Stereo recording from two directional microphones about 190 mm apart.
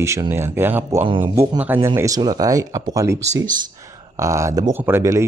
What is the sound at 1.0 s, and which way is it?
Speech, 25° right (ahead or behind).